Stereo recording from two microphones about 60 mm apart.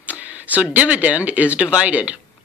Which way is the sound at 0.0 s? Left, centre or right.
Right.